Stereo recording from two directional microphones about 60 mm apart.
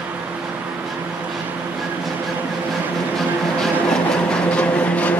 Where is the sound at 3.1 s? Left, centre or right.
Centre.